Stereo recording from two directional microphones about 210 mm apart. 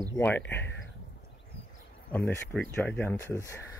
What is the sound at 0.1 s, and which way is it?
Speech, 10° left (ahead or behind).